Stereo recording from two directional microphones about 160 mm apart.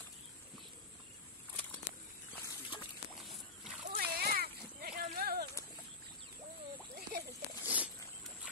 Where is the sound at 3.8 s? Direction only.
70° right (ahead or behind).